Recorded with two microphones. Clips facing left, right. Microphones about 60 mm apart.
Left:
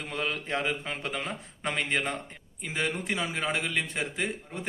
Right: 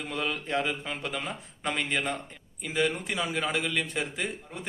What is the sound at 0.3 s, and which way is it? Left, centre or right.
A man's voice, left.